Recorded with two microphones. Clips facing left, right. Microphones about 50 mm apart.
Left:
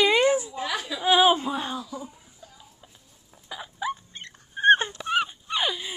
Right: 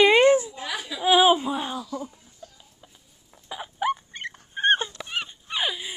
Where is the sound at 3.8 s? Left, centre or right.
Right.